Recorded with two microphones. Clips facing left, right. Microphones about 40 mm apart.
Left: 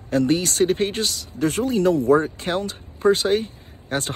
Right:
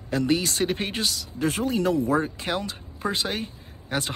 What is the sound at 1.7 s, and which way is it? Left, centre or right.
Speech, left.